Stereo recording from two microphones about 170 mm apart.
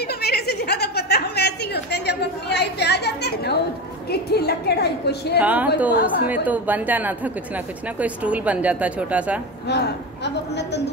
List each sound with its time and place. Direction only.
0.0 s chuckle: 70° left (ahead or behind)
4.1 s a woman's voice: 70° left (ahead or behind)
5.4 s a woman's voice: 10° right (ahead or behind)
9.7 s a woman's voice: 80° left